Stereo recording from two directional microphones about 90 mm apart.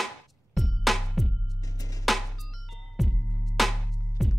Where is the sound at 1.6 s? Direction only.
40° left (ahead or behind).